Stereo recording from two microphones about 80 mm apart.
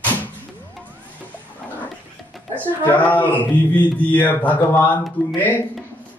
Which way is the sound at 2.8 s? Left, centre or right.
Centre.